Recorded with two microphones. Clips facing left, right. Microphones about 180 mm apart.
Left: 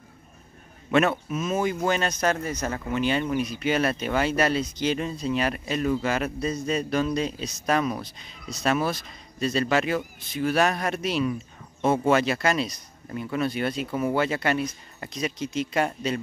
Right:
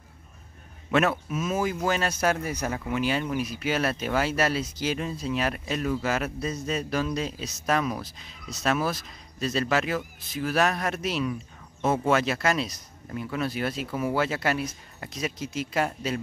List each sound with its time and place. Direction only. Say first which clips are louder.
1.3 s speech: left 2 dB; 5° right (ahead or behind)